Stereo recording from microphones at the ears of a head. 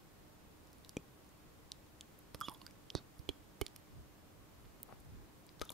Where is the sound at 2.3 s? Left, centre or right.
Right.